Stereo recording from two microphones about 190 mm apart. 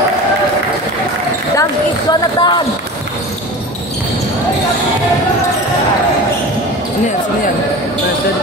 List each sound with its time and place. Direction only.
1.6 s speech: 20° left (ahead or behind)